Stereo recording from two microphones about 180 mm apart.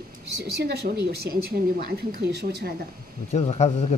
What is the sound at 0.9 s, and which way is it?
A woman's voice, 50° right (ahead or behind).